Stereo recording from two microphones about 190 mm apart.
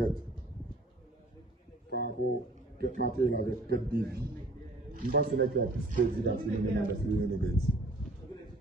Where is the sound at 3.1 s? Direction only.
55° right (ahead or behind).